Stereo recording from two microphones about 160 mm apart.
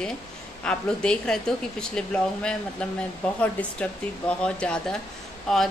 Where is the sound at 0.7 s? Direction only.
5° left (ahead or behind).